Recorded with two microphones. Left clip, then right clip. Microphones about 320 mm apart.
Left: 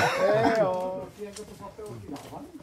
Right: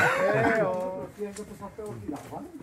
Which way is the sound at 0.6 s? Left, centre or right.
Centre.